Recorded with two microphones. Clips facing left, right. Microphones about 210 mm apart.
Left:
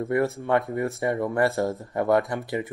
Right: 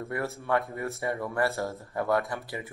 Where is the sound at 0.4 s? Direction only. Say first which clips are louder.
Left 5 dB; 15° left (ahead or behind).